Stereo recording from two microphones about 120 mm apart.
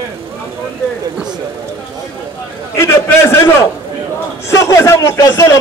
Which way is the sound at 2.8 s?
20° left (ahead or behind).